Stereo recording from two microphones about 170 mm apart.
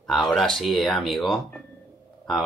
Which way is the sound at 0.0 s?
Centre (ahead or behind).